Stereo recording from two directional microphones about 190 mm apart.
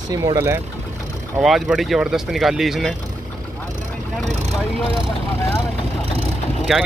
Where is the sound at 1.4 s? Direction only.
Centre (ahead or behind).